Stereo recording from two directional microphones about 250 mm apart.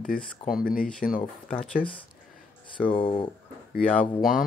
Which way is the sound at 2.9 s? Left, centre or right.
Left.